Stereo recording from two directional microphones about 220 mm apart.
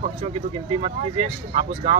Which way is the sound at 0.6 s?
25° right (ahead or behind).